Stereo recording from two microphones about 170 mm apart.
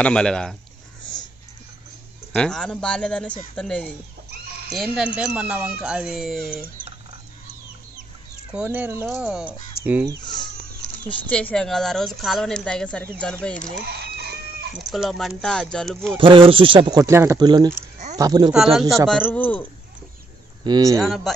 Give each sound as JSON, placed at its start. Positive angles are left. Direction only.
{"t": 0.0, "sound": "speech", "side_deg": 5}
{"t": 2.3, "sound": "speech", "side_deg": 5}
{"t": 8.5, "sound": "speech", "side_deg": -10}
{"t": 10.2, "sound": "speech", "side_deg": 25}
{"t": 11.2, "sound": "speech", "side_deg": 5}
{"t": 13.8, "sound": "chicken", "side_deg": -70}
{"t": 14.7, "sound": "speech", "side_deg": 0}
{"t": 16.2, "sound": "speech", "side_deg": -30}
{"t": 18.5, "sound": "speech", "side_deg": 0}
{"t": 20.6, "sound": "speech", "side_deg": -20}
{"t": 21.0, "sound": "speech", "side_deg": 0}